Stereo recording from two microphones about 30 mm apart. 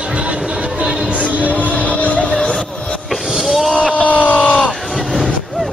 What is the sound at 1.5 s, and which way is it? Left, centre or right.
Music, left.